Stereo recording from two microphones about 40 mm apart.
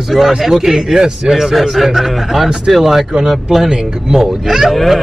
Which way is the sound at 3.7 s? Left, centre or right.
Centre.